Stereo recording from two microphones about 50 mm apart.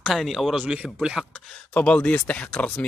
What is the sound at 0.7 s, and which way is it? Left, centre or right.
Speech, centre.